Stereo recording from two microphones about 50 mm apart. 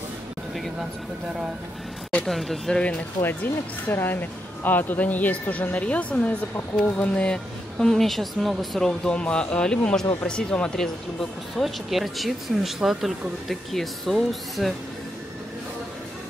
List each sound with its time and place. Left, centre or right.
2.0 s a sound: centre
2.3 s speech: centre
3.2 s speech: left; by 7.3 s centre
7.8 s speech: centre
8.8 s speech: centre
11.1 s speech: centre